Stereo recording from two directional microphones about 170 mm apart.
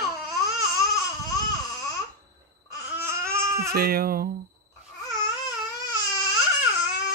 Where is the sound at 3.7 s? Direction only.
65° right (ahead or behind).